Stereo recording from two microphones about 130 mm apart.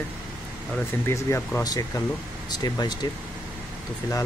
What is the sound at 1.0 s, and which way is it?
Speech, 20° left (ahead or behind).